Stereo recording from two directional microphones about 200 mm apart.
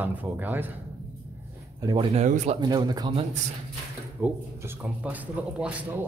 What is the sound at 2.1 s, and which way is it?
Speech, 35° right (ahead or behind).